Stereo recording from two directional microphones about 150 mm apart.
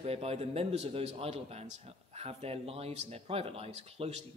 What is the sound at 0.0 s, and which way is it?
A man's voice, 45° right (ahead or behind).